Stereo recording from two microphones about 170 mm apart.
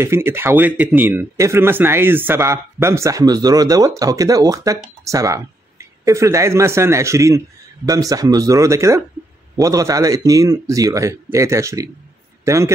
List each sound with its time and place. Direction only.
0.0 s a man's voice: 15° right (ahead or behind)